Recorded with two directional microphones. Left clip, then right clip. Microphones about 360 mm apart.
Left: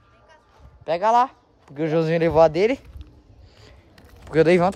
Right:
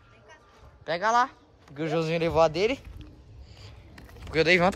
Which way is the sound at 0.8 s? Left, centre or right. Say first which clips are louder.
Left 6 dB; centre.